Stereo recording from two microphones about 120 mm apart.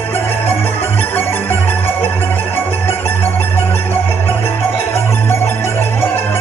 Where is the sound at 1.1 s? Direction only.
15° left (ahead or behind).